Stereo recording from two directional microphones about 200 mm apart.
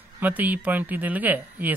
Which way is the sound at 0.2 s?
10° right (ahead or behind).